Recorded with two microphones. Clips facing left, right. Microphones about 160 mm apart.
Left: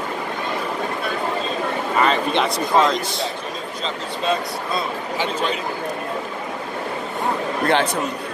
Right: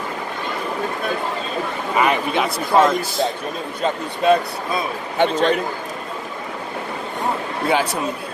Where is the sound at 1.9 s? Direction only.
15° right (ahead or behind).